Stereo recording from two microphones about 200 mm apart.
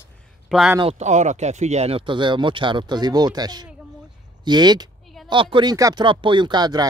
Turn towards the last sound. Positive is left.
turn(degrees=-20)  # may be behind; listen again after turning